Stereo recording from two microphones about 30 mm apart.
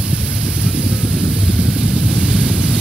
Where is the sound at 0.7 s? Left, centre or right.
Centre.